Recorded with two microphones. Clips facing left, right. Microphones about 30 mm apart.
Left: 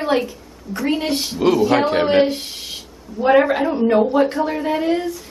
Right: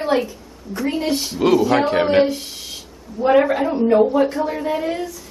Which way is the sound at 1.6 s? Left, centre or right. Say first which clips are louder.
Left 1 dB; centre.